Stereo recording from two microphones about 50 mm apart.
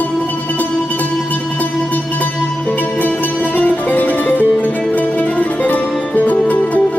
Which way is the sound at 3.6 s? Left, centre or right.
Left.